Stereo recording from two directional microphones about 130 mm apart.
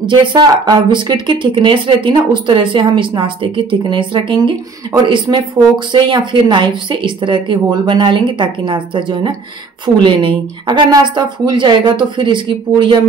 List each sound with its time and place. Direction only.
0.0 s speech: 40° right (ahead or behind)